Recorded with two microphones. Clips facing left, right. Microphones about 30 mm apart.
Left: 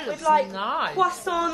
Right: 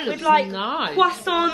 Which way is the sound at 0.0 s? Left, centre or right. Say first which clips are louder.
Right 3 dB; right.